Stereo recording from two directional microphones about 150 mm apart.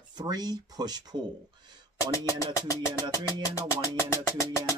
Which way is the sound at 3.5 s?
20° left (ahead or behind).